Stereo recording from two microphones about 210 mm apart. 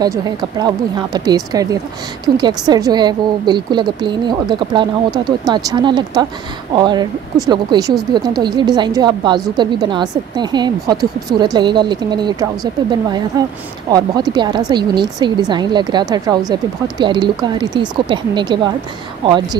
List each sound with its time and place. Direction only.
0.0 s a woman's voice: 20° right (ahead or behind)